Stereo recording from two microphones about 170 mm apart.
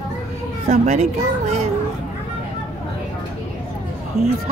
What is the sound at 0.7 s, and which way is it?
Speech, 40° right (ahead or behind).